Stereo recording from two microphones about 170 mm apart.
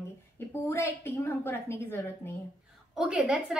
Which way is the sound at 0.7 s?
15° left (ahead or behind).